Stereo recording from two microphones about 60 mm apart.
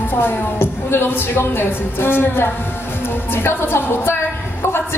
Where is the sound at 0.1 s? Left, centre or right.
Left.